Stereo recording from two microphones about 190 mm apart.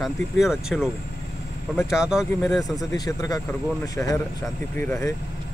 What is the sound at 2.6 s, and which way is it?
Speech, 20° left (ahead or behind).